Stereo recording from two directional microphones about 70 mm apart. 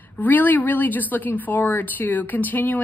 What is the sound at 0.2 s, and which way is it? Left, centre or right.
A woman's voice, left.